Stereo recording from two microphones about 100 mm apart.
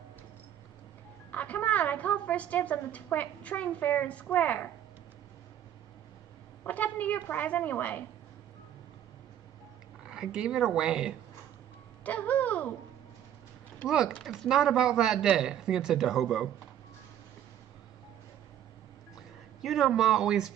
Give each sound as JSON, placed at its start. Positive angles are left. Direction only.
{"t": 1.3, "sound": "a woman's voice", "side_deg": 15}
{"t": 6.6, "sound": "a woman's voice", "side_deg": 15}
{"t": 10.0, "sound": "speech", "side_deg": -5}
{"t": 12.0, "sound": "a woman's voice", "side_deg": 15}
{"t": 13.8, "sound": "a man's voice", "side_deg": -5}
{"t": 19.6, "sound": "a man's voice", "side_deg": -5}